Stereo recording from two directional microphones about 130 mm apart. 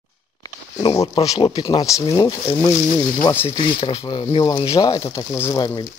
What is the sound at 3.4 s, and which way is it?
Speech, 45° left (ahead or behind).